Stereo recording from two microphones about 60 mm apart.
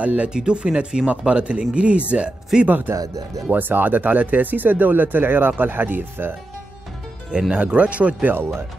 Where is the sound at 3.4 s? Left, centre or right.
Right.